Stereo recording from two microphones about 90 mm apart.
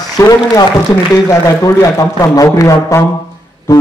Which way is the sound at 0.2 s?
35° left (ahead or behind).